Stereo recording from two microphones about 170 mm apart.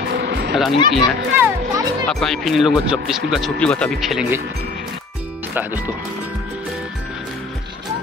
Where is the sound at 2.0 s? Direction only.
Centre (ahead or behind).